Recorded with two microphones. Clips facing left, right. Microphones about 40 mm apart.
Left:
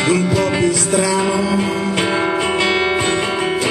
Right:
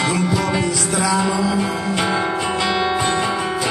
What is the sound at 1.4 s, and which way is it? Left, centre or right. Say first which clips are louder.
Music: left 2 dB; left.